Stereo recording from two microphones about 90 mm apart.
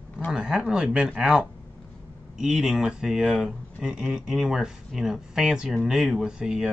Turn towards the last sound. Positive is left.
turn(degrees=-5)  # may be behind; listen again after turning